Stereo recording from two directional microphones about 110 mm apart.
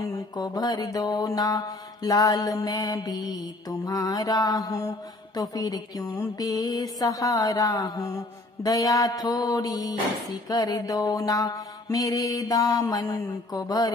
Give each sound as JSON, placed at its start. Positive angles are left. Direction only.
{"t": 0.4, "sound": "mantra", "side_deg": 35}